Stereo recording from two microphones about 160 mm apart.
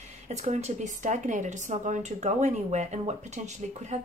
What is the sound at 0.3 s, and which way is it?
A woman's voice, 45° right (ahead or behind).